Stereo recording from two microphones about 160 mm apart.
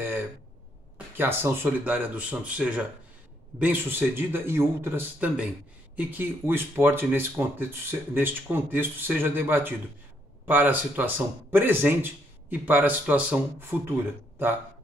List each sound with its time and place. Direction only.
0.9 s speech: 15° right (ahead or behind)